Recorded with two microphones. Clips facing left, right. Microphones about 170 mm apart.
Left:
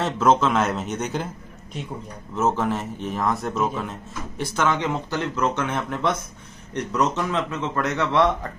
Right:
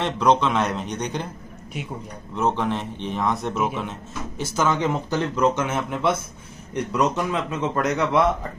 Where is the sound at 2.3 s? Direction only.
5° left (ahead or behind).